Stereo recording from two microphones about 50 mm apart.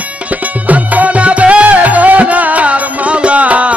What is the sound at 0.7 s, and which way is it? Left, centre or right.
Music, right.